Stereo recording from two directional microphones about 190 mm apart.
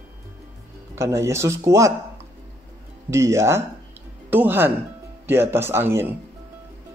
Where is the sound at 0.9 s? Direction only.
15° right (ahead or behind).